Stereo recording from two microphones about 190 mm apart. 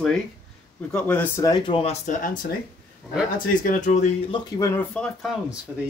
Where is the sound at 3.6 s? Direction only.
45° left (ahead or behind).